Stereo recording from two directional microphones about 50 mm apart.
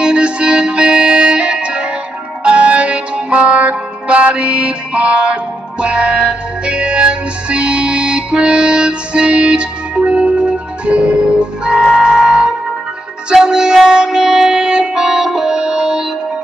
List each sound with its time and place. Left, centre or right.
0.0 s music: centre